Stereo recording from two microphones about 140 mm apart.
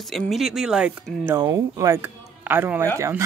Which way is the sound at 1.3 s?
20° right (ahead or behind).